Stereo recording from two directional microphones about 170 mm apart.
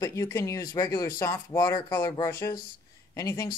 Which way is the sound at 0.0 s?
15° left (ahead or behind).